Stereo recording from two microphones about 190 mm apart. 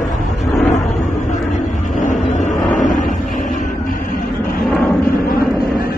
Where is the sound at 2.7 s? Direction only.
40° left (ahead or behind).